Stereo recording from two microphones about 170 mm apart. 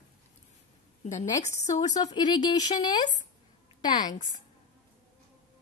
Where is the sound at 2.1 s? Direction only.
25° left (ahead or behind).